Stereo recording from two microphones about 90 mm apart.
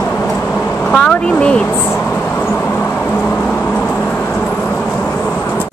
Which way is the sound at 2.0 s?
15° left (ahead or behind).